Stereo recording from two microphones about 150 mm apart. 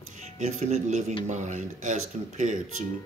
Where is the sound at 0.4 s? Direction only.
50° right (ahead or behind).